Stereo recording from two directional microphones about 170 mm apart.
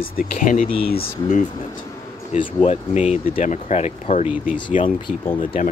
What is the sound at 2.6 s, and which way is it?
Speech, 40° left (ahead or behind).